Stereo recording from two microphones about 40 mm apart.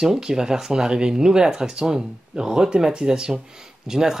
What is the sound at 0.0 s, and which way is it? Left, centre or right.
Speech, centre.